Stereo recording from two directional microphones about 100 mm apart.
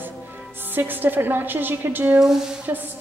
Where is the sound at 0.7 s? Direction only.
20° right (ahead or behind).